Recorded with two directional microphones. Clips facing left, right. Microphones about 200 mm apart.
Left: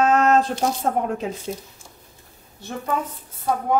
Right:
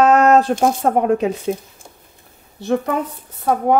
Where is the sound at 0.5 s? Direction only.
60° right (ahead or behind).